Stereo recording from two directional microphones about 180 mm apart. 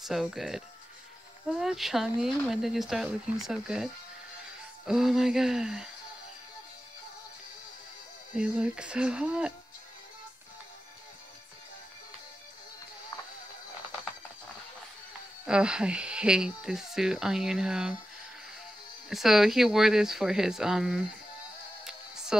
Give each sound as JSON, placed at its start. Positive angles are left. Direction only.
{"t": 0.0, "sound": "speech", "side_deg": 0}
{"t": 8.4, "sound": "speech", "side_deg": -5}
{"t": 15.4, "sound": "speech", "side_deg": -5}
{"t": 19.0, "sound": "speech", "side_deg": 0}
{"t": 21.8, "sound": "music", "side_deg": -5}